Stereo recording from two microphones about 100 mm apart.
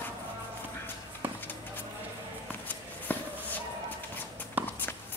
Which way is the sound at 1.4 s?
20° left (ahead or behind).